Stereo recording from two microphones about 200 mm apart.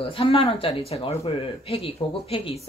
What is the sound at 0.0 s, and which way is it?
Speech, 25° left (ahead or behind).